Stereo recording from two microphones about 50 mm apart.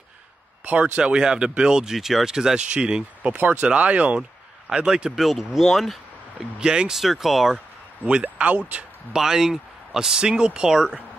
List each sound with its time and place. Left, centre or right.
0.9 s speech: centre
4.6 s speech: centre
5.2 s speech: centre
6.6 s speech: centre
7.0 s speech: centre
8.0 s speech: right
9.1 s speech: centre